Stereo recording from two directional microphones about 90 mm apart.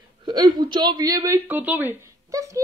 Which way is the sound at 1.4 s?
20° right (ahead or behind).